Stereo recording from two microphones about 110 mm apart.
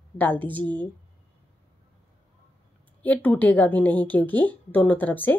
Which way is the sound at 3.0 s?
15° left (ahead or behind).